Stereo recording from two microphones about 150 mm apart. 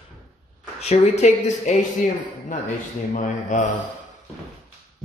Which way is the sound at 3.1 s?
55° left (ahead or behind).